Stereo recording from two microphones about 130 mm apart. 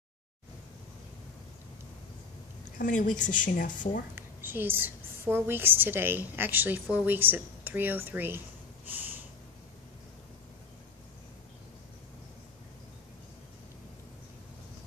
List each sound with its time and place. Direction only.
2.8 s a woman's voice: 85° left
4.1 s a woman's voice: 15° right (ahead or behind)